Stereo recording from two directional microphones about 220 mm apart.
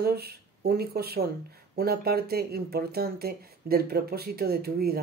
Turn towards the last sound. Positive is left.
turn(degrees=-45)  # may be behind; listen again after turning